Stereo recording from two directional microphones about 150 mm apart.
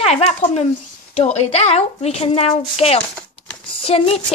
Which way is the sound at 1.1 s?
45° left (ahead or behind).